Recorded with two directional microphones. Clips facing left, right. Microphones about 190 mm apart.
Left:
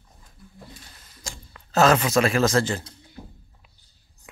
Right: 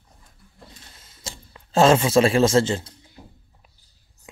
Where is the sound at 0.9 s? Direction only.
25° right (ahead or behind).